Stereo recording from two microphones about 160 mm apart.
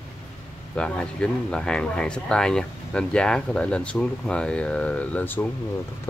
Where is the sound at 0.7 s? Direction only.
5° left (ahead or behind).